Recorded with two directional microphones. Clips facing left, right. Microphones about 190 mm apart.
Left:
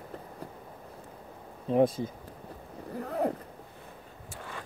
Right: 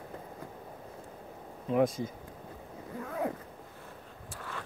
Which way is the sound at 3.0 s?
40° left (ahead or behind).